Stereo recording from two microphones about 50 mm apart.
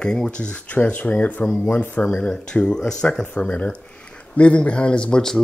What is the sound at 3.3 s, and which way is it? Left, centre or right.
Speech, left.